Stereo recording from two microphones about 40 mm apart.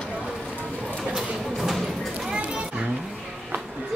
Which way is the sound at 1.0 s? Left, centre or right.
Centre.